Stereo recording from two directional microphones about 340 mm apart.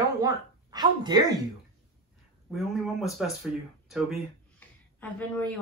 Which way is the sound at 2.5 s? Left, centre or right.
Centre.